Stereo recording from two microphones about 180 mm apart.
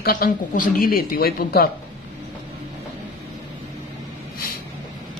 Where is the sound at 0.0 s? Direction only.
55° left (ahead or behind).